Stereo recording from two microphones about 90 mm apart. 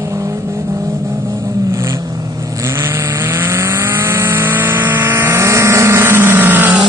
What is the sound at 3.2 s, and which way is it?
Vehicle, 25° right (ahead or behind).